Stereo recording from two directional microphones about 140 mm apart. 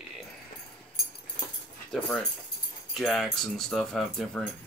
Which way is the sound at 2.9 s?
Centre (ahead or behind).